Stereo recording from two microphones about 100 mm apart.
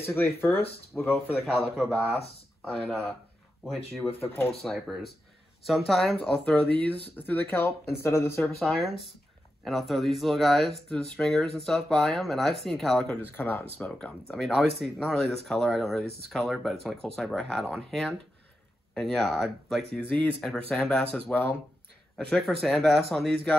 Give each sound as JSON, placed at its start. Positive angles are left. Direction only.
{"t": 0.0, "sound": "speech", "side_deg": 20}
{"t": 1.4, "sound": "speech", "side_deg": 0}
{"t": 4.6, "sound": "speech", "side_deg": 0}
{"t": 8.5, "sound": "speech", "side_deg": 0}
{"t": 13.2, "sound": "speech", "side_deg": 20}
{"t": 20.1, "sound": "speech", "side_deg": 15}
{"t": 22.1, "sound": "speech", "side_deg": 5}